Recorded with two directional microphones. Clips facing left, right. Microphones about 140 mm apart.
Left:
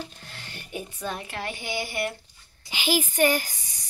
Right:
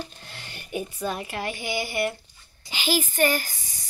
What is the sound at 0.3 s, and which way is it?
A woman's voice, 15° right (ahead or behind).